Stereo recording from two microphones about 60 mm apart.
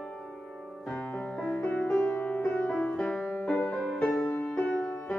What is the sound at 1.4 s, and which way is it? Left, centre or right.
Music, left.